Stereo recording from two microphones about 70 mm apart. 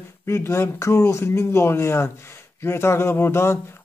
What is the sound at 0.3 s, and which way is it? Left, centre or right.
Speech, left.